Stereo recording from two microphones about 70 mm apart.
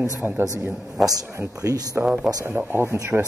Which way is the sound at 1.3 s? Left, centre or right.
Right.